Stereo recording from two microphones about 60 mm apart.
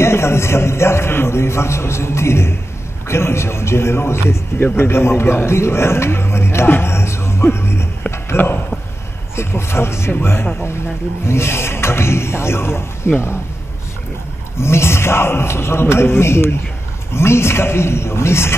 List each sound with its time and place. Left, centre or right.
0.0 s a man's voice: left
9.3 s a man's voice: left
14.6 s a man's voice: left